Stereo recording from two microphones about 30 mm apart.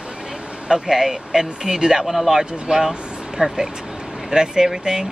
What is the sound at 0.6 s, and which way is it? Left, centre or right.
Speech, centre.